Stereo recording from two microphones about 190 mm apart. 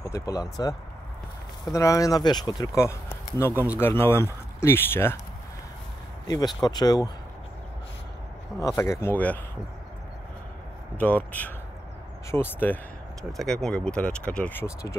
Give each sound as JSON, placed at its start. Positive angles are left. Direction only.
{"t": 0.0, "sound": "speech", "side_deg": 20}
{"t": 6.2, "sound": "speech", "side_deg": 20}
{"t": 8.5, "sound": "speech", "side_deg": 15}
{"t": 11.0, "sound": "speech", "side_deg": 10}